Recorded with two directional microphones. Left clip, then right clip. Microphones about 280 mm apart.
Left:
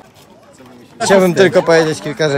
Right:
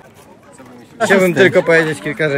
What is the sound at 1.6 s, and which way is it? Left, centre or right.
Speech, centre.